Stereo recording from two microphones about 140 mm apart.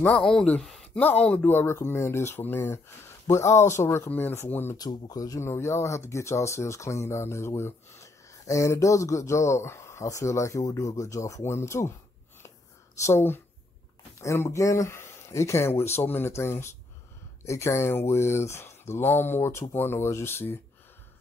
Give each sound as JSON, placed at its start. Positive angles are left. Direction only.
{"t": 0.0, "sound": "speech", "side_deg": 5}
{"t": 4.7, "sound": "speech", "side_deg": 25}
{"t": 13.0, "sound": "speech", "side_deg": 15}